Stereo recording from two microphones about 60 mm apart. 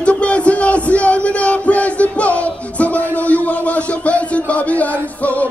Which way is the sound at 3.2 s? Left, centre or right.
Left.